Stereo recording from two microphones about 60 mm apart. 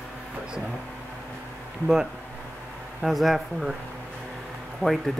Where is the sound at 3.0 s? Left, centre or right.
Centre.